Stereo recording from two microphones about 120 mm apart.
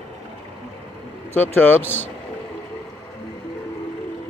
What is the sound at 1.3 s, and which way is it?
Speech, 15° left (ahead or behind).